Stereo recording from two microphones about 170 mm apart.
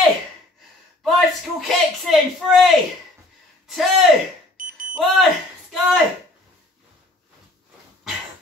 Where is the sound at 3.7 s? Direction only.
Centre (ahead or behind).